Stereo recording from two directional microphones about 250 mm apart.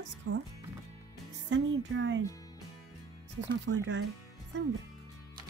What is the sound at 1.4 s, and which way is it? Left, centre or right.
Speech, right.